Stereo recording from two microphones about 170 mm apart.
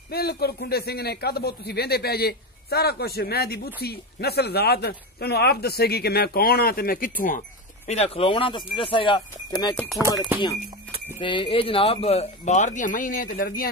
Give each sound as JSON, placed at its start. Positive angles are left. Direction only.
{"t": 0.1, "sound": "speech", "side_deg": 65}
{"t": 9.8, "sound": "speech", "side_deg": 0}
{"t": 11.1, "sound": "speech", "side_deg": 30}